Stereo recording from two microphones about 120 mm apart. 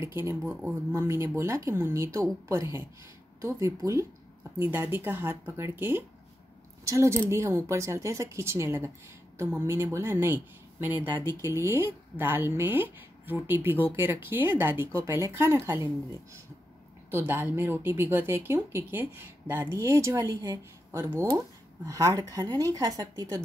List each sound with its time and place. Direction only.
0.0 s speech: 20° right (ahead or behind)
17.1 s a woman's voice: 20° right (ahead or behind)